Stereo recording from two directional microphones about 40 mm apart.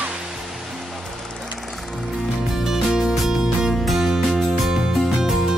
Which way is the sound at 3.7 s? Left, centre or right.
Centre.